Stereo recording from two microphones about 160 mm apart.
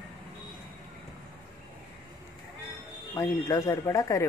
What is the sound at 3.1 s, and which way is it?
Speech, 20° left (ahead or behind).